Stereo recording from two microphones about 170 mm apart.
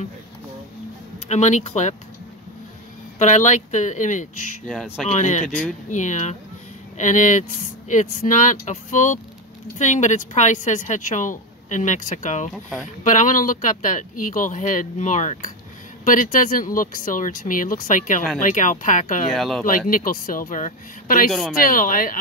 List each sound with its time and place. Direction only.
1.3 s a woman's voice: 40° left (ahead or behind)
3.2 s a woman's voice: 45° left (ahead or behind)
4.6 s speech: centre (ahead or behind)
5.0 s a woman's voice: 45° left (ahead or behind)
19.3 s speech: centre (ahead or behind)
19.9 s a woman's voice: 55° left (ahead or behind)
21.3 s speech: centre (ahead or behind)
21.6 s a woman's voice: 55° left (ahead or behind)